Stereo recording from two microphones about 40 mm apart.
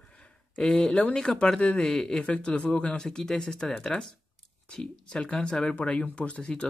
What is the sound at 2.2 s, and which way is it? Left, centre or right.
Speech, left.